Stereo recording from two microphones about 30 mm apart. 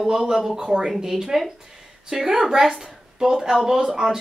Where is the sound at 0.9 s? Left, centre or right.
Centre.